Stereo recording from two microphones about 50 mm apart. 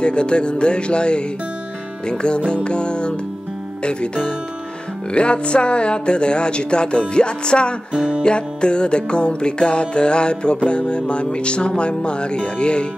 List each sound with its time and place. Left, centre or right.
0.0 s music: centre
7.9 s music: right
8.2 s music: centre